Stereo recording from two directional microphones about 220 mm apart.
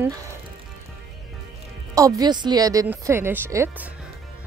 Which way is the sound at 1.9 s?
15° right (ahead or behind).